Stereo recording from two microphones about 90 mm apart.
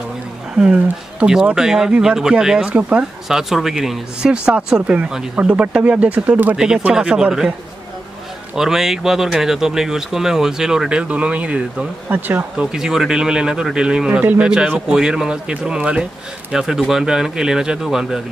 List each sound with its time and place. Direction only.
1.2 s speech: 10° right (ahead or behind)
3.3 s speech: 5° right (ahead or behind)
6.5 s speech: 10° right (ahead or behind)
8.5 s speech: 5° right (ahead or behind)
12.5 s speech: 5° right (ahead or behind)